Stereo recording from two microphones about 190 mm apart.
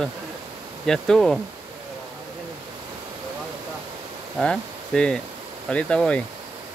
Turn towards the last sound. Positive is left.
turn(degrees=5)  # may be behind; listen again after turning